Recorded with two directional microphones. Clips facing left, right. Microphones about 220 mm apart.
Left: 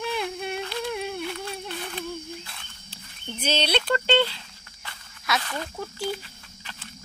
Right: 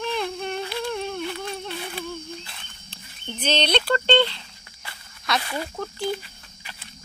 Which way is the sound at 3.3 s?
10° left (ahead or behind).